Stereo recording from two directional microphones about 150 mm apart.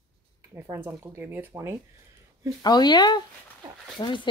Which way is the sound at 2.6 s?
30° left (ahead or behind).